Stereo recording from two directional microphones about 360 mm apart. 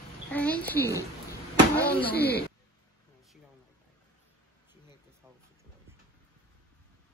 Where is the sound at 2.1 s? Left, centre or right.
Left.